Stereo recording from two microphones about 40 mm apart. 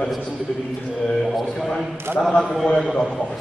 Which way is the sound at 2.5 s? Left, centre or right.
Centre.